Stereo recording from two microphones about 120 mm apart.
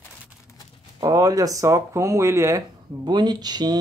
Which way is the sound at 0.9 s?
30° right (ahead or behind).